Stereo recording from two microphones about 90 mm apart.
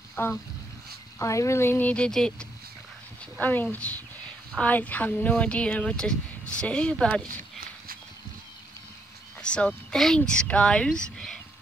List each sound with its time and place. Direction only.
0.2 s speech: 25° left (ahead or behind); by 2.4 s 5° left (ahead or behind)
3.3 s speech: 20° left (ahead or behind)
9.4 s speech: 10° left (ahead or behind)